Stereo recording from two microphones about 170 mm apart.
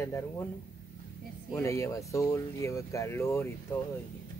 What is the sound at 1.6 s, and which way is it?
Speech, 15° left (ahead or behind).